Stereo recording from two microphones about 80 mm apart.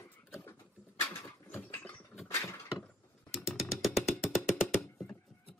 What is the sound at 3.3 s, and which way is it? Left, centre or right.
Music, centre.